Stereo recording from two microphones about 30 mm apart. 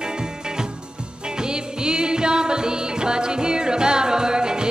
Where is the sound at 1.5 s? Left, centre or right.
Right.